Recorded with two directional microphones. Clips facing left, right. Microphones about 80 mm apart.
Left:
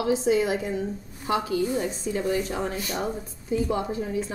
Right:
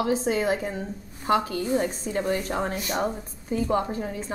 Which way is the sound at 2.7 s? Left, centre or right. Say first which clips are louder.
Right 2 dB; right.